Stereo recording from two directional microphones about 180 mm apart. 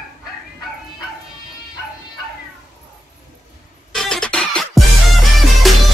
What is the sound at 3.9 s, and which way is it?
Music, 5° left (ahead or behind).